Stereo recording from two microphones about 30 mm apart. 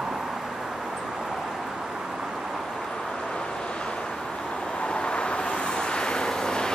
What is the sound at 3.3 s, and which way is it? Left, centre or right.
Vehicle, left.